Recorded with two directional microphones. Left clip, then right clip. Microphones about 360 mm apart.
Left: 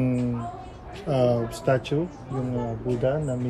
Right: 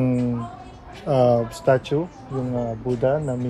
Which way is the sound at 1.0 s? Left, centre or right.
Centre.